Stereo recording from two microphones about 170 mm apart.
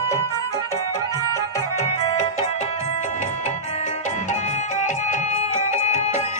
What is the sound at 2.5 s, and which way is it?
Music, 40° left (ahead or behind).